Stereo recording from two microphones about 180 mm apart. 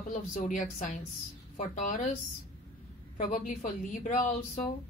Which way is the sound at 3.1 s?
40° left (ahead or behind).